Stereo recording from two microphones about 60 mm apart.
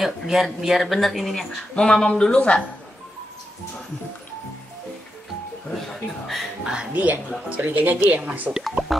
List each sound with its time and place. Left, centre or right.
0.3 s speech: centre
5.8 s speech: centre
6.6 s speech: centre
6.9 s speech: right
8.5 s speech: centre